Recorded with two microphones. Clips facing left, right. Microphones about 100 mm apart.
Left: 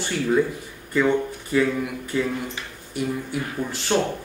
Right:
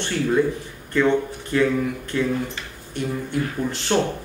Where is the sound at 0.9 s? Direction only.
5° left (ahead or behind).